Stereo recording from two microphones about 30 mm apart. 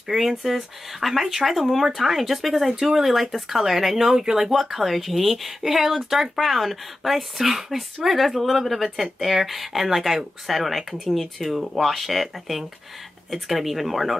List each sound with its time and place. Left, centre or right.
0.1 s speech: centre
4.1 s speech: centre
4.5 s speech: centre